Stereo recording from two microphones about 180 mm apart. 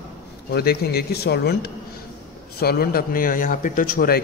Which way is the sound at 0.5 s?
60° left (ahead or behind).